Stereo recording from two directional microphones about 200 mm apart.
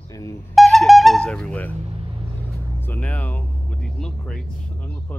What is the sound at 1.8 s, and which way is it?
Vehicle, 30° right (ahead or behind).